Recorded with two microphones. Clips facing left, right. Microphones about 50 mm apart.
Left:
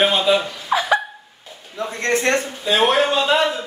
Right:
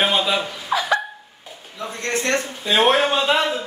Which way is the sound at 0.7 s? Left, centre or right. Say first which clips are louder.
Left 2 dB; centre.